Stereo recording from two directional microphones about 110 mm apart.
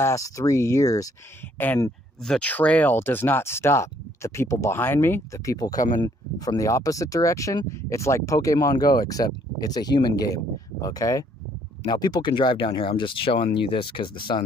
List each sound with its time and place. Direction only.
0.0 s speech: 30° left (ahead or behind)
2.2 s speech: 10° left (ahead or behind); by 14.4 s 45° left (ahead or behind)